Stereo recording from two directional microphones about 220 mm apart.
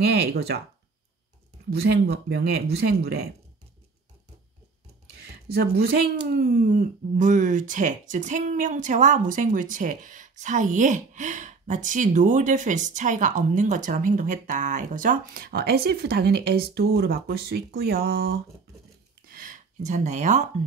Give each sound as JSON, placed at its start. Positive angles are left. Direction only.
{"t": 0.3, "sound": "speech", "side_deg": -45}
{"t": 1.7, "sound": "speech", "side_deg": -50}
{"t": 5.5, "sound": "speech", "side_deg": -45}
{"t": 19.2, "sound": "a sound", "side_deg": -40}